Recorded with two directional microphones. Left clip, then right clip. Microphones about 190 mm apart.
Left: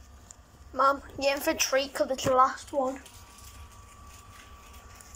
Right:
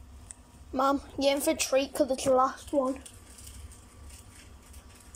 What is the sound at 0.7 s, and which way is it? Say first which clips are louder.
A woman's voice: left 2 dB; 15° right (ahead or behind).